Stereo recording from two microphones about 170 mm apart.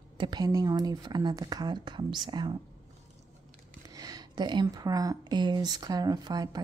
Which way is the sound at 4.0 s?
25° right (ahead or behind).